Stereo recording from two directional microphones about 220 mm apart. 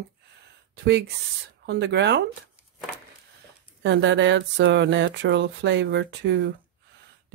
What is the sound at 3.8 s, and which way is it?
Speech, 55° right (ahead or behind).